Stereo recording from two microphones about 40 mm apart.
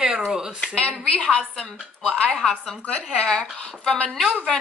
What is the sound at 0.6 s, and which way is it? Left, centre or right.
A woman's voice, left.